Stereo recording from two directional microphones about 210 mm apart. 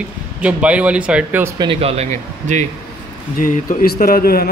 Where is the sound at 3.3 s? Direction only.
45° left (ahead or behind).